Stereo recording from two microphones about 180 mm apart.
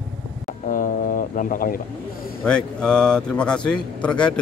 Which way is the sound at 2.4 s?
5° left (ahead or behind).